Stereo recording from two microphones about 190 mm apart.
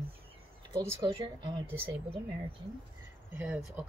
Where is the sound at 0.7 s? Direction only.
20° right (ahead or behind).